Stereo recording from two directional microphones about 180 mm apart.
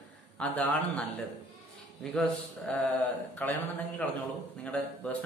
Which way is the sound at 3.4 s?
10° left (ahead or behind).